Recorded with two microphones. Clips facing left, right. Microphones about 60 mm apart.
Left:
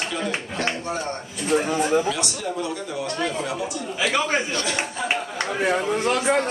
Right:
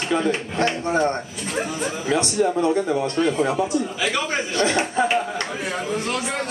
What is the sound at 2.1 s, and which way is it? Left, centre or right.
Speech, right.